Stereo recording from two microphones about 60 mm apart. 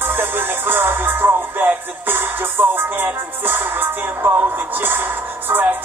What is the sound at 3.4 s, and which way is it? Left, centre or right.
Music, right.